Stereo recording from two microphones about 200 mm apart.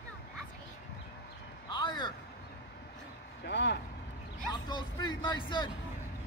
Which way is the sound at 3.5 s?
60° left (ahead or behind).